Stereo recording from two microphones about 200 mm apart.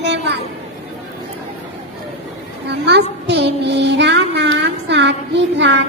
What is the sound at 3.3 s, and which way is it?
Child singing, 60° right (ahead or behind).